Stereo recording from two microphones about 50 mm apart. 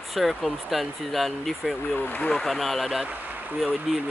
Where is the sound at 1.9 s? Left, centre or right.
Left.